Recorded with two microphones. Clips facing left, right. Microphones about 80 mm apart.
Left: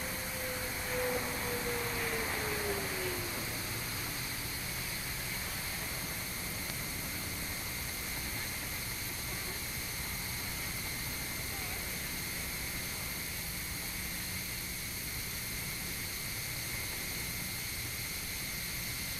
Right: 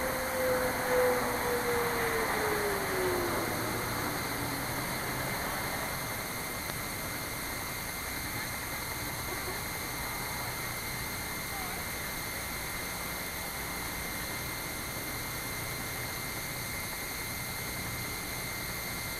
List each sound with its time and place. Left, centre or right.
0.0 s vehicle: right